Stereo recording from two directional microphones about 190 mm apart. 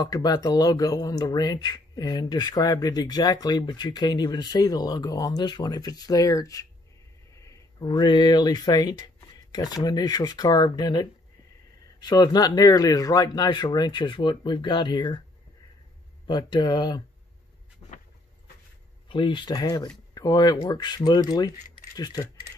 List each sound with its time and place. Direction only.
0.0 s speech: 20° left (ahead or behind)
16.3 s speech: 25° left (ahead or behind)
17.8 s vehicle: 20° left (ahead or behind)
19.0 s speech: 25° left (ahead or behind)